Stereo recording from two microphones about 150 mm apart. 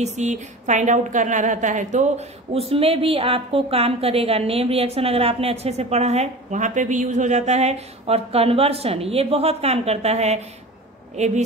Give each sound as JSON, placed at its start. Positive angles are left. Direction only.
{"t": 0.0, "sound": "a woman's voice", "side_deg": -50}